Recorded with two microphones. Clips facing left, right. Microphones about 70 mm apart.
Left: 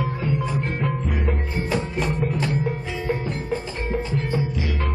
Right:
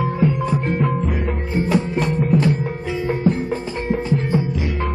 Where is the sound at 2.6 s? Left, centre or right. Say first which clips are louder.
Right 3 dB; right.